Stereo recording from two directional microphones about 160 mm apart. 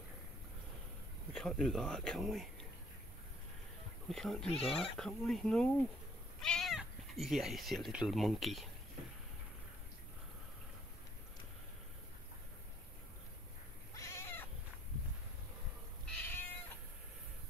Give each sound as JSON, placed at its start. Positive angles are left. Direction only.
{"t": 1.3, "sound": "speech", "side_deg": 0}
{"t": 4.1, "sound": "speech", "side_deg": 5}
{"t": 4.5, "sound": "speech", "side_deg": 40}
{"t": 4.9, "sound": "speech", "side_deg": 5}
{"t": 13.9, "sound": "cat", "side_deg": 15}
{"t": 16.1, "sound": "cat", "side_deg": 10}